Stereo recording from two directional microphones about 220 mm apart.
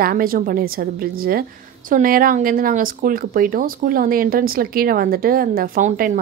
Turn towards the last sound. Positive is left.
turn(degrees=-40)  # may be behind; listen again after turning